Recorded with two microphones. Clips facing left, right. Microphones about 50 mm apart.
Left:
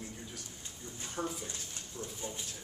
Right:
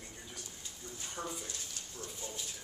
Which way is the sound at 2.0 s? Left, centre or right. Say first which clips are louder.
Left 3 dB; left.